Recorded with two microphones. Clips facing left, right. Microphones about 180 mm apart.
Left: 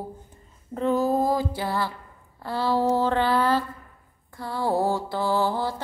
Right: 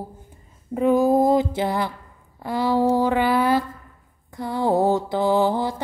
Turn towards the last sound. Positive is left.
turn(degrees=-20)  # may be behind; listen again after turning